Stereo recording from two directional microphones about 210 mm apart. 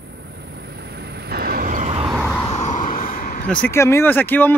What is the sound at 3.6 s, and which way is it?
Speech, 10° left (ahead or behind).